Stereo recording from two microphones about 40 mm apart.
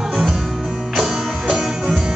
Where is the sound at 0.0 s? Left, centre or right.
Centre.